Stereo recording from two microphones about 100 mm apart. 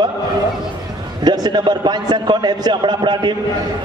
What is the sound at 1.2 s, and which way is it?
A man's voice, 45° right (ahead or behind).